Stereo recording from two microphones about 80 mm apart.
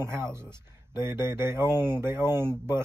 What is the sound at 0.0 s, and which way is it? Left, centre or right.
A man's voice, right.